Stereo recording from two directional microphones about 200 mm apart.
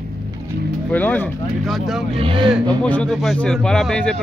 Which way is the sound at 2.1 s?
25° right (ahead or behind).